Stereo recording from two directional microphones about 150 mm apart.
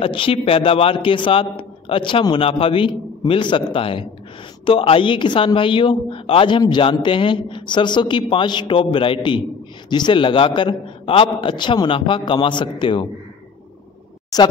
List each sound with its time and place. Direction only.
0.0 s a man's voice: 35° left (ahead or behind)
14.3 s speech: 25° left (ahead or behind)